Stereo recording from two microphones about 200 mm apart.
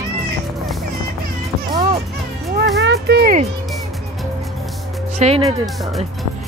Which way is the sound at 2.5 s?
55° right (ahead or behind).